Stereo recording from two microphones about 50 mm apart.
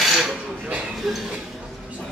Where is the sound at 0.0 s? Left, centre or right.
Centre.